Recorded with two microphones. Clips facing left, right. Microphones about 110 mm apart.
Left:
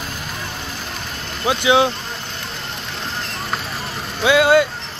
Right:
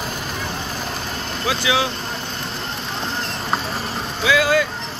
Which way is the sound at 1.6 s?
25° left (ahead or behind).